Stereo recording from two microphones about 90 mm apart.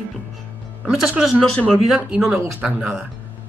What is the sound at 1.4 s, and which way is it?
Speech, 10° left (ahead or behind).